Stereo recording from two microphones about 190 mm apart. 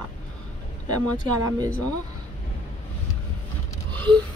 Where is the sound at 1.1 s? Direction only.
20° right (ahead or behind).